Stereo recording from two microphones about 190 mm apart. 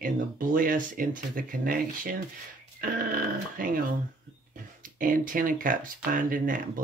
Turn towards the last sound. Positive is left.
turn(degrees=-45)  # may be behind; listen again after turning